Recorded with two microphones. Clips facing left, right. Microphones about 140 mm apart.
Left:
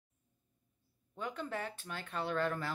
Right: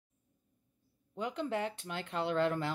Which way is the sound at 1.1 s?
20° right (ahead or behind).